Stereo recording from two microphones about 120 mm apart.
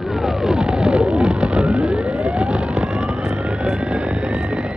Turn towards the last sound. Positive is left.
turn(degrees=-10)  # may be behind; listen again after turning